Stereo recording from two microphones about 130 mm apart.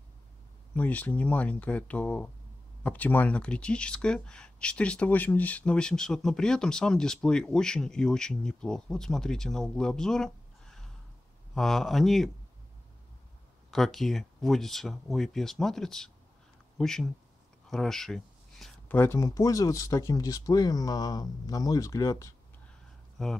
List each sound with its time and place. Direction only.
0.7 s speech: 10° left (ahead or behind)
13.7 s speech: centre (ahead or behind)
18.9 s speech: 15° left (ahead or behind)
23.2 s speech: 5° left (ahead or behind)